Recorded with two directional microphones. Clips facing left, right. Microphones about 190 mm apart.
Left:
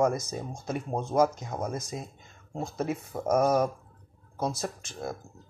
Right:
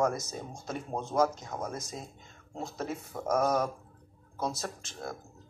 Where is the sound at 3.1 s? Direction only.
20° left (ahead or behind).